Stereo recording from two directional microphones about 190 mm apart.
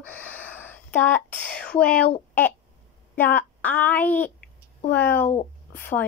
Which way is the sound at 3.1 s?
10° left (ahead or behind).